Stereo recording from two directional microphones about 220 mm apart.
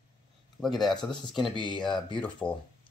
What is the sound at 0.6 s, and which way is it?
Speech, centre (ahead or behind).